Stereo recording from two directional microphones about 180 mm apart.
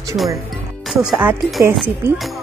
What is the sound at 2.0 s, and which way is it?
Speech, 15° right (ahead or behind).